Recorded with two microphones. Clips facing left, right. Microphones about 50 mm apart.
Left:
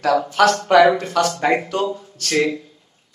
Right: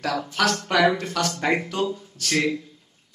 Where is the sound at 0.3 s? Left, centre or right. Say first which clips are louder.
Left 7 dB; centre.